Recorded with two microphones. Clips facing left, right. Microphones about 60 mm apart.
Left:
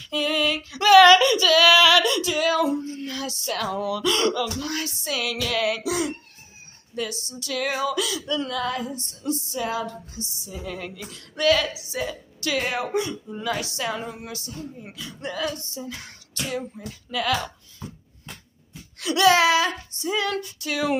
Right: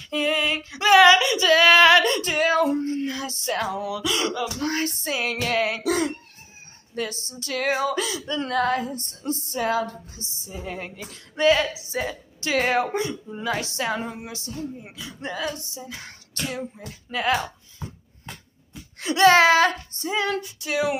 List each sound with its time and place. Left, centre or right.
0.1 s female singing: right
1.5 s female singing: right
3.0 s music: right
3.6 s speech: centre
4.6 s music: right
7.0 s female singing: right
14.8 s speech: centre
17.1 s female singing: right
18.9 s female singing: right